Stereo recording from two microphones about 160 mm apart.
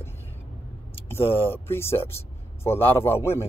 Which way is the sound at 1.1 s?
15° left (ahead or behind).